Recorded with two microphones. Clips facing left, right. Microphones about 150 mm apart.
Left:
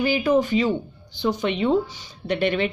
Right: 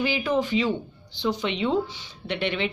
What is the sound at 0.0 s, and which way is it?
Speech, 45° left (ahead or behind).